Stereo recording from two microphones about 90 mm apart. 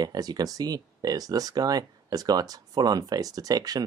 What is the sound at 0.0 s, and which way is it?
Speech, 45° right (ahead or behind).